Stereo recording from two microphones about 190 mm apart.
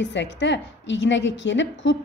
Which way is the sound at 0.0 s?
70° left (ahead or behind).